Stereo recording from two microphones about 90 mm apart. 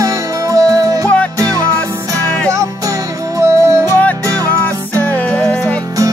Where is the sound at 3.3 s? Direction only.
35° right (ahead or behind).